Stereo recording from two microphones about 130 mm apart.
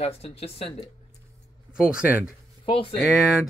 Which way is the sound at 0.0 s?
50° left (ahead or behind).